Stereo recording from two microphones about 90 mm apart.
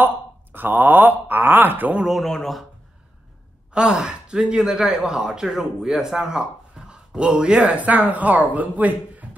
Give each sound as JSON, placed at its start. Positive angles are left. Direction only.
{"t": 0.0, "sound": "speech", "side_deg": -20}
{"t": 2.0, "sound": "speech", "side_deg": 0}
{"t": 3.7, "sound": "speech", "side_deg": -10}